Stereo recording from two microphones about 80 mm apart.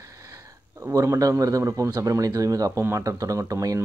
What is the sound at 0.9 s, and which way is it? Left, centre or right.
Speech, right.